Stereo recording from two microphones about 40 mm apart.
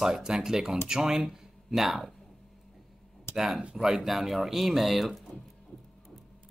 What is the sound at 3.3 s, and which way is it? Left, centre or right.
Speech, centre.